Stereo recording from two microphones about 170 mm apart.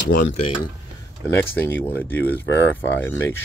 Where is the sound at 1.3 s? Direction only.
15° left (ahead or behind).